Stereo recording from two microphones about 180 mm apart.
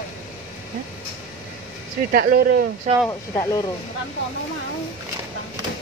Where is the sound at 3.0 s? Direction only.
20° left (ahead or behind).